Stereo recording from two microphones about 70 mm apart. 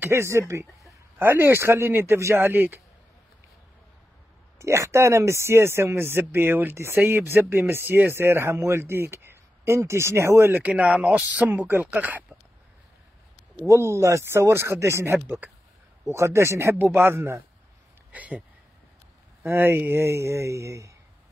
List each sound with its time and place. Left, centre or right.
0.0 s speech: right
1.1 s speech: right
4.6 s speech: right
10.5 s speech: centre
13.7 s speech: right
15.2 s speech: right
18.1 s speech: right
19.4 s speech: right